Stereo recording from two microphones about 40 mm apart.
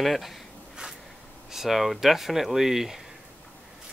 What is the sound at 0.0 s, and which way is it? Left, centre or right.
Speech, centre.